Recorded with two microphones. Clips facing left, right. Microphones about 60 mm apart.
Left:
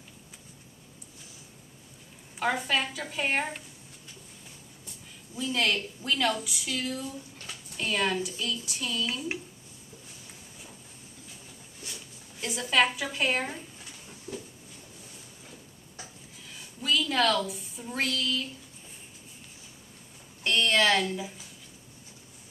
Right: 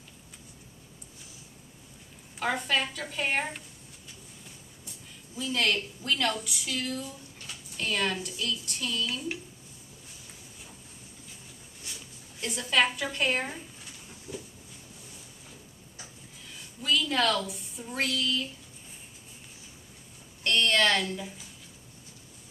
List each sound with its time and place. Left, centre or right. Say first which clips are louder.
2.3 s a woman's voice: left 1 dB; centre
5.4 s a woman's voice: even; centre
12.4 s a woman's voice: left 1 dB; centre
14.3 s a sound: left 1 dB; centre
16.5 s a woman's voice: even; centre
20.4 s a woman's voice: left 1 dB; centre